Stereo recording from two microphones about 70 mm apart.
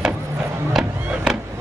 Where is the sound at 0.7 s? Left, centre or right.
Centre.